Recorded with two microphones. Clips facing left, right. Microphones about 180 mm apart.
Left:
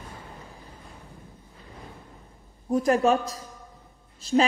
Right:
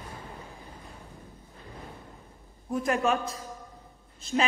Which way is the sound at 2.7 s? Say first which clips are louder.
Left 5 dB; 35° left (ahead or behind).